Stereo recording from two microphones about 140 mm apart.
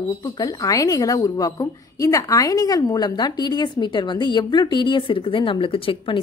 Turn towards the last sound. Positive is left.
turn(degrees=40)  # may be behind; listen again after turning